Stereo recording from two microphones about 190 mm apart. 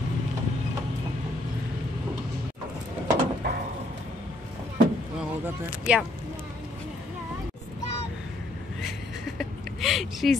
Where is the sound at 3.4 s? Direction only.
60° right (ahead or behind).